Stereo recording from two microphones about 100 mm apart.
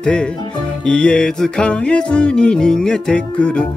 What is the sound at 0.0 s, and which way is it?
Music, 10° left (ahead or behind).